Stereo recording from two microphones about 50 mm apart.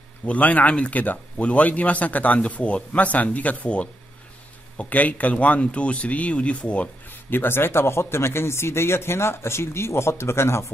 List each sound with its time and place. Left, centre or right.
0.3 s speech: left
7.1 s speech: left